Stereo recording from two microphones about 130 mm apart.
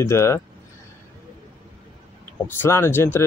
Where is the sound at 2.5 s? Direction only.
20° left (ahead or behind).